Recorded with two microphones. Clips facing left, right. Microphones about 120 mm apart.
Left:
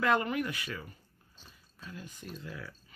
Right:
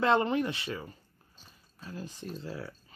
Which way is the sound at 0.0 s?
25° right (ahead or behind).